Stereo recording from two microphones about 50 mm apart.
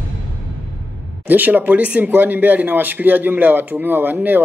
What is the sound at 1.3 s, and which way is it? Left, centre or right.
Speech, right.